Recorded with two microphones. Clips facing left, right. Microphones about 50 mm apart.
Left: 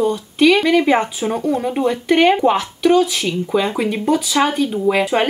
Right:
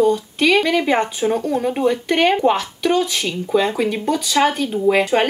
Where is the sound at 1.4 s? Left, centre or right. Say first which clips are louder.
Left 1 dB; left.